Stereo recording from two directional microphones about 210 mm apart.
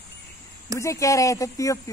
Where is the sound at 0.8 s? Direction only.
15° left (ahead or behind).